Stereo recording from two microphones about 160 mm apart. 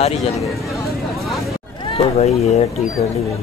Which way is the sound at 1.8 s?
40° left (ahead or behind).